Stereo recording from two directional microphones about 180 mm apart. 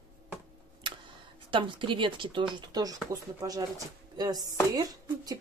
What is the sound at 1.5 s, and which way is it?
Speech, 30° right (ahead or behind).